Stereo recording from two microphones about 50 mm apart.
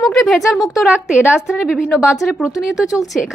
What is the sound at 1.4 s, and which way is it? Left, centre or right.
A woman's voice, centre.